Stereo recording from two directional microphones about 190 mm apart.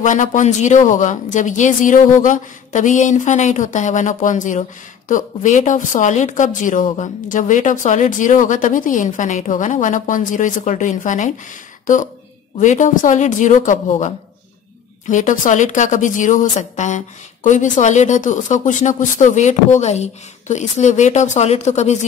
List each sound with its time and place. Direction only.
0.0 s a woman's voice: 40° left (ahead or behind)